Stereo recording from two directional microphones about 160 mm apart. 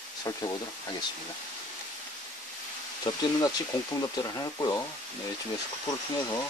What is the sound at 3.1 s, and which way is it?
Speech, 35° left (ahead or behind).